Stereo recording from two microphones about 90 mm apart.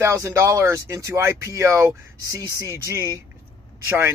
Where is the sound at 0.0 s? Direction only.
35° right (ahead or behind).